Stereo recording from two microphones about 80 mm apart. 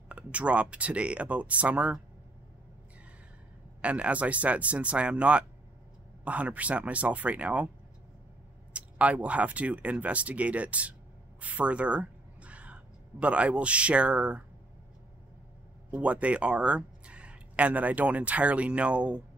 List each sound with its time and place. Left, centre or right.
0.1 s speech: centre
3.8 s speech: centre
8.7 s speech: centre
15.9 s speech: centre